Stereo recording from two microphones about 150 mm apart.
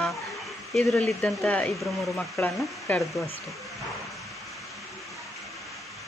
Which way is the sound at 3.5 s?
Centre (ahead or behind).